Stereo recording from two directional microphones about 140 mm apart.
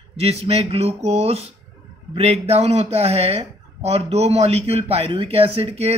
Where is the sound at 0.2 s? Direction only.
45° right (ahead or behind).